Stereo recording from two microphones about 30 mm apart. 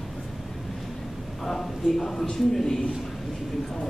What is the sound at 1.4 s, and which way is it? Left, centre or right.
Speech, centre.